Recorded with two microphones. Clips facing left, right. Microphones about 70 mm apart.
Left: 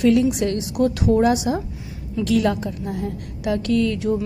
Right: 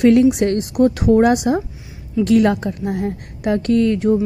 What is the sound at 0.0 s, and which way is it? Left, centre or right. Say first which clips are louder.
A woman's voice: right 5 dB; right.